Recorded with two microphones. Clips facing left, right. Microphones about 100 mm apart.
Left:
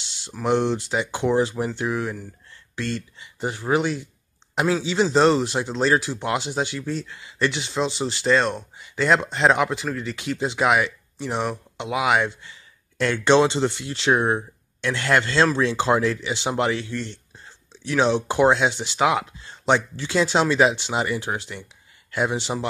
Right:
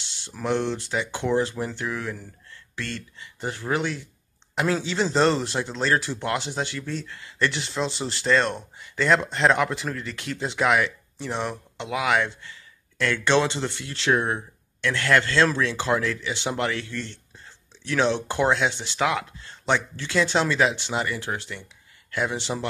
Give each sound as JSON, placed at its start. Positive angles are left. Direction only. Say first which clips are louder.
{"t": 0.4, "sound": "speech", "louder": "left 4 dB", "side_deg": 20}
{"t": 10.6, "sound": "speech", "louder": "left 1 dB", "side_deg": 15}